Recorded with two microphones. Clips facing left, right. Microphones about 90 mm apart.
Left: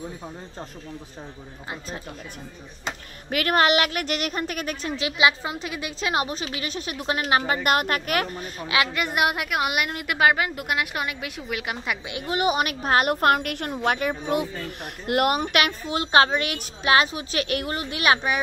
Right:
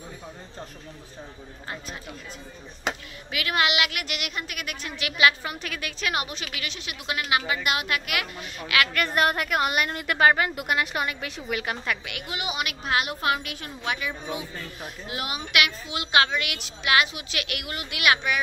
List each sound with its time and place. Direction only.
3.3 s a woman's voice: 45° left (ahead or behind); by 8.8 s 30° left (ahead or behind)
8.8 s a woman's voice: 15° left (ahead or behind)
12.1 s a woman's voice: 25° left (ahead or behind)
12.4 s a woman's voice: 40° left (ahead or behind)
13.1 s a woman's voice: 55° left (ahead or behind)
15.5 s a woman's voice: 40° left (ahead or behind)